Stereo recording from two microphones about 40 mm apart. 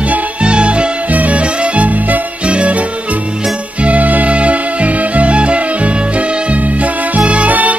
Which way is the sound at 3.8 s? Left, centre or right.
Right.